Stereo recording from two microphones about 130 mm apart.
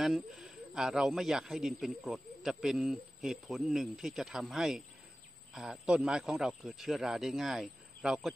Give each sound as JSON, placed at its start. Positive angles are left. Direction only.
{"t": 0.0, "sound": "speech", "side_deg": 0}